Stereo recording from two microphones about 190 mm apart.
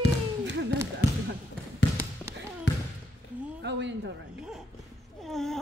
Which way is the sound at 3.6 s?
65° right (ahead or behind).